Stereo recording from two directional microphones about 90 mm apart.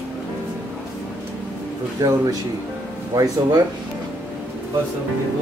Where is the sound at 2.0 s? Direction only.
35° right (ahead or behind).